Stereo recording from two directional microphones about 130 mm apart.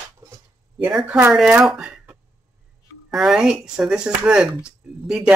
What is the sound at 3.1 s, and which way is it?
Speech, 5° right (ahead or behind).